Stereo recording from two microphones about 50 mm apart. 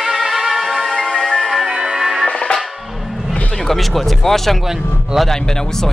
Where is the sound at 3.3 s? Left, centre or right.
Centre.